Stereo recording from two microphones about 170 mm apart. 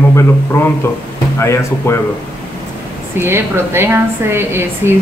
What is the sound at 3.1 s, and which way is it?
A woman's voice, 15° right (ahead or behind).